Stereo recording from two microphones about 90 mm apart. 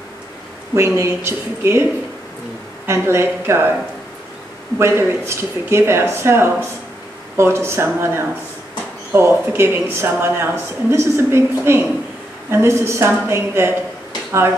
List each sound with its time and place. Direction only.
0.7 s a woman's voice: 30° right (ahead or behind)
2.9 s a woman's voice: 30° right (ahead or behind)
4.7 s a woman's voice: 30° right (ahead or behind)